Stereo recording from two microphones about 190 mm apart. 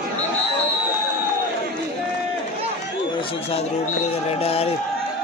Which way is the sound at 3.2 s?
30° left (ahead or behind).